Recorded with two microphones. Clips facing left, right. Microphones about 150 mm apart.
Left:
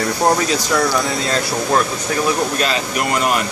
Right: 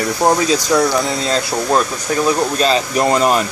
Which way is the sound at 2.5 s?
30° right (ahead or behind).